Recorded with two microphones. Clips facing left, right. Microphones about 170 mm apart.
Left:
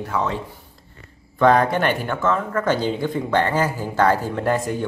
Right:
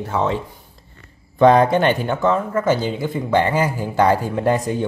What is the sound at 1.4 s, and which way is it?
Speech, 20° right (ahead or behind).